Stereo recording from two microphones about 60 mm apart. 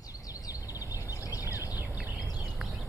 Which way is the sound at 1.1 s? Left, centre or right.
Left.